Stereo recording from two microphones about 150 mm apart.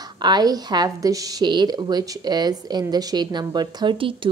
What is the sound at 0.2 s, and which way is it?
A woman's voice, 25° right (ahead or behind).